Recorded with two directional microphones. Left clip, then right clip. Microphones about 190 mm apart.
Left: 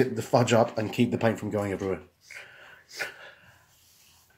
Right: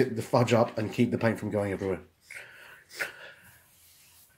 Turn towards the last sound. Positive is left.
turn(degrees=-10)  # may be behind; listen again after turning